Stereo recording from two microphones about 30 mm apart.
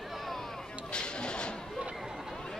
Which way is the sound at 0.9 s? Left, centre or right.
Left.